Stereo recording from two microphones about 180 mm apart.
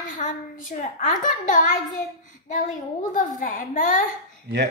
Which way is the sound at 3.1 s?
50° left (ahead or behind).